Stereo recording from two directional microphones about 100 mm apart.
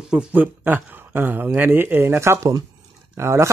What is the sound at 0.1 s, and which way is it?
A man's voice, 15° right (ahead or behind).